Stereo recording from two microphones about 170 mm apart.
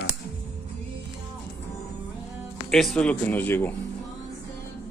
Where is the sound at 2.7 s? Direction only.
Centre (ahead or behind).